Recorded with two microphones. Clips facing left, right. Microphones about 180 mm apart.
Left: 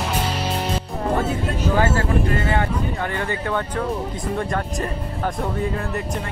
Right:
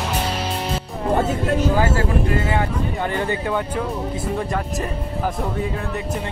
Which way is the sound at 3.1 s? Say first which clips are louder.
Right 3 dB; 20° right (ahead or behind).